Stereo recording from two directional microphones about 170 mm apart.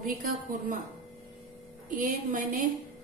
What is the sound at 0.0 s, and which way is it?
Speech, 55° right (ahead or behind).